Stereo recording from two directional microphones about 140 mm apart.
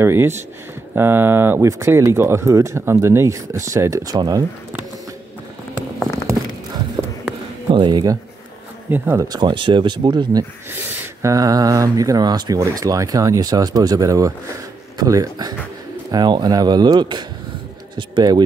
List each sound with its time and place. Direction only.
0.0 s speech: 15° right (ahead or behind)
7.7 s speech: 35° right (ahead or behind)
8.9 s speech: 15° right (ahead or behind); by 18.4 s 30° right (ahead or behind)